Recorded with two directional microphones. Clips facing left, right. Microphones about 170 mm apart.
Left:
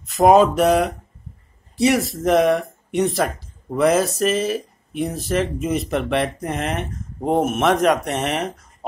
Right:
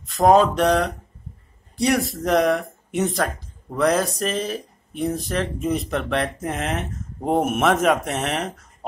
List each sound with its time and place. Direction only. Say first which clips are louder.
0.0 s speech: left 2 dB; 10° left (ahead or behind)